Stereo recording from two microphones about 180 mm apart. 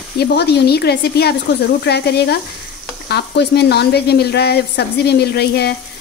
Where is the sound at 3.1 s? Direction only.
65° left (ahead or behind).